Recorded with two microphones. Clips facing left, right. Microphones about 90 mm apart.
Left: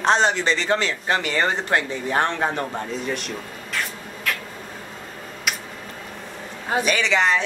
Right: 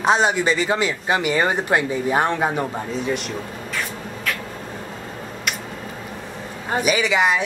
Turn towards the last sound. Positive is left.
turn(degrees=-10)  # may be behind; listen again after turning